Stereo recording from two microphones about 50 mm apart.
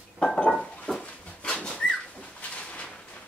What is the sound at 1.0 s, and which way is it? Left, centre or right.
Dog, centre.